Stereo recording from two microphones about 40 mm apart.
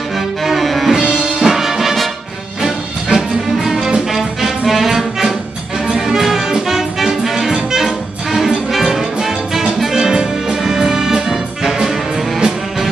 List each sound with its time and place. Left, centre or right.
0.4 s music: centre
3.1 s music: right
3.5 s music: centre